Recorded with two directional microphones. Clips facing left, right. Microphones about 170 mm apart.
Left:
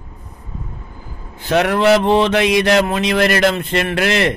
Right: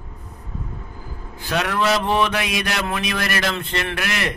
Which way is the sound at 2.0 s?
25° left (ahead or behind).